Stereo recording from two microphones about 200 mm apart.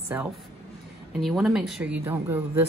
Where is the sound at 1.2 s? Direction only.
Centre (ahead or behind).